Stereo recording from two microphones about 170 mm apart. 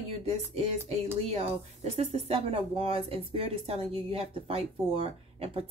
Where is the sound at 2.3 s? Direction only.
35° right (ahead or behind).